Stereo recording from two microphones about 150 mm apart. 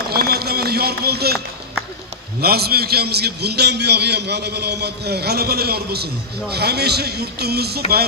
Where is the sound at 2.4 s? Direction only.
90° right.